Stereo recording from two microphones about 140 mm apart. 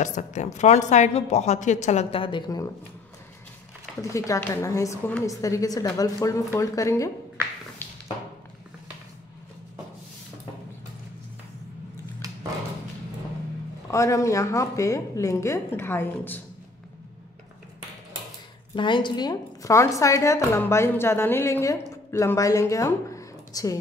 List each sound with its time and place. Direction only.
0.0 s a woman's voice: 60° left (ahead or behind); by 2.6 s 30° left (ahead or behind)
4.0 s a woman's voice: 20° left (ahead or behind)
13.8 s a woman's voice: 20° left (ahead or behind)
18.8 s a woman's voice: 35° left (ahead or behind)